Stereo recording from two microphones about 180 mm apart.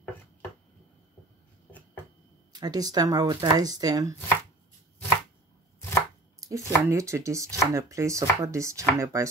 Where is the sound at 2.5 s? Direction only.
20° right (ahead or behind).